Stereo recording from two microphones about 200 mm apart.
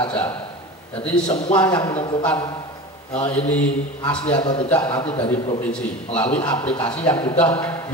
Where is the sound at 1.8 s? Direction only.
20° left (ahead or behind).